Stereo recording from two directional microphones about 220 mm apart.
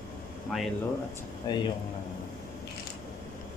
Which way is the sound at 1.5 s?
15° left (ahead or behind).